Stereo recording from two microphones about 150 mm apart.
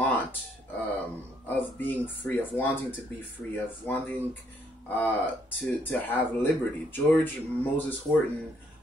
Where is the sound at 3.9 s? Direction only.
15° left (ahead or behind).